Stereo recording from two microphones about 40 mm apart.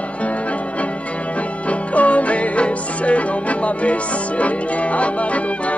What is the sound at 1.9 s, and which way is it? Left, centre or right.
Music, left.